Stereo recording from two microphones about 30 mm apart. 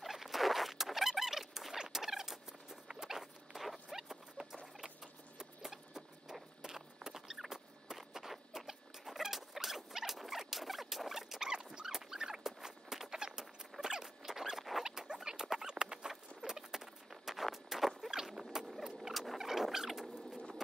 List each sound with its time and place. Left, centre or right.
0.0 s a sound: centre
4.4 s patter: right
4.7 s a sound: centre
6.6 s rodents: centre
11.1 s rodents: centre
11.9 s dog: centre
12.4 s walk: centre
13.2 s rodents: centre
16.4 s a sound: centre
18.1 s rodents: centre